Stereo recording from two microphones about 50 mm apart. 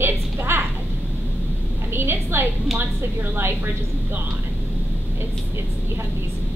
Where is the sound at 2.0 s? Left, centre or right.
Right.